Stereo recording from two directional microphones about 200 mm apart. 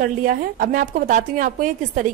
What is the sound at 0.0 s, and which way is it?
A woman's voice, 45° right (ahead or behind).